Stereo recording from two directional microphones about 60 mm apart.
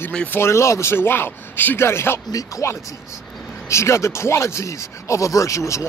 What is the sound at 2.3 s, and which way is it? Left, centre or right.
Speech, left.